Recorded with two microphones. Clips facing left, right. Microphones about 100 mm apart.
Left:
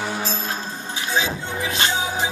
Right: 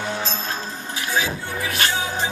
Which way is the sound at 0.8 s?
25° left (ahead or behind).